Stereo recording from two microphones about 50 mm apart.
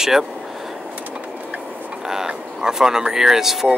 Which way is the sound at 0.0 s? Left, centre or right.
Centre.